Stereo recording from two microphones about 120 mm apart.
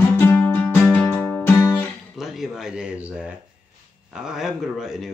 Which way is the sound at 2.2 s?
5° right (ahead or behind).